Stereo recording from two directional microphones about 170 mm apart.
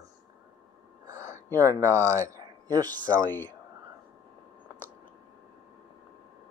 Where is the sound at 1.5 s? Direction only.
20° right (ahead or behind).